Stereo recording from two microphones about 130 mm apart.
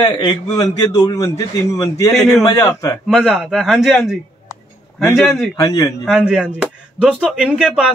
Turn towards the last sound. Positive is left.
turn(degrees=-10)  # may be behind; listen again after turning